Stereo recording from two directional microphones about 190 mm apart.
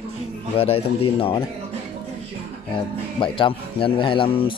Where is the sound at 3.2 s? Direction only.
25° left (ahead or behind).